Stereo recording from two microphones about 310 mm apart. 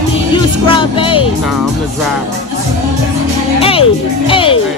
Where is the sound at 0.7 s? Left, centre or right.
Centre.